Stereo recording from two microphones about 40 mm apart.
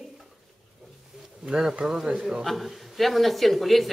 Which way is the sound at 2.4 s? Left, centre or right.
Centre.